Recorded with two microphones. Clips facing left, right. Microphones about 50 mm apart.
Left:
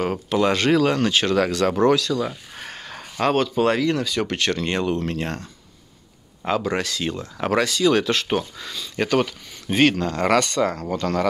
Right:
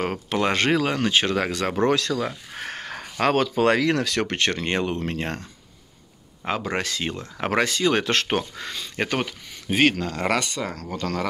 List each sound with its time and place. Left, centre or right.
0.0 s speech: right
0.7 s speech: centre
2.0 s speech: right
2.2 s a sound: right
3.3 s speech: right
4.3 s speech: right
6.4 s speech: right
8.1 s speech: right
8.9 s speech: right
9.7 s speech: centre